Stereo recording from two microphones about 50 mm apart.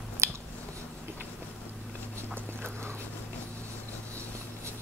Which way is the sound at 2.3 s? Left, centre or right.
Right.